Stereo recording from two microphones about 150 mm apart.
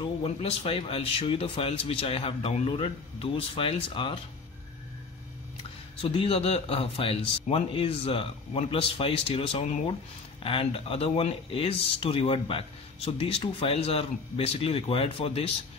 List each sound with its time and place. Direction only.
0.0 s speech: 40° left (ahead or behind)
5.6 s speech: 40° left (ahead or behind)